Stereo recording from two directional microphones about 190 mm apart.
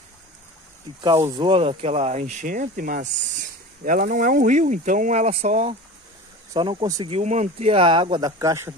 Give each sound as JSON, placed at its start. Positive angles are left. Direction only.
{"t": 1.3, "sound": "speech", "side_deg": -25}
{"t": 6.5, "sound": "speech", "side_deg": -25}
{"t": 7.2, "sound": "speech", "side_deg": -35}